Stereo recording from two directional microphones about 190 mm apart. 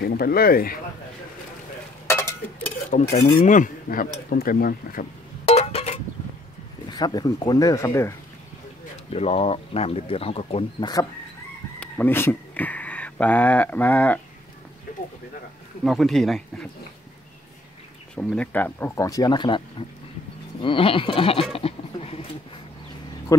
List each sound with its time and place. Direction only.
0.0 s speech: 55° left (ahead or behind)
2.0 s a sound: 15° left (ahead or behind)
2.9 s speech: 40° left (ahead or behind)
5.4 s a sound: 30° left (ahead or behind)
7.0 s speech: 20° left (ahead or behind)
9.1 s speech: 30° left (ahead or behind)
11.8 s speech: 10° left (ahead or behind)
15.8 s speech: centre (ahead or behind)
18.1 s speech: 5° left (ahead or behind); by 19.6 s 25° left (ahead or behind)
20.6 s speech: 30° left (ahead or behind)
21.5 s a sound: 30° left (ahead or behind)